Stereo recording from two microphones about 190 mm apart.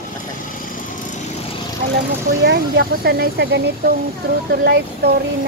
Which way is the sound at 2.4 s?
60° right (ahead or behind).